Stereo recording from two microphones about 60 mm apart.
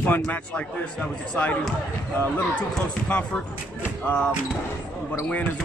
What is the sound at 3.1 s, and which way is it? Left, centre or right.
Speech, centre.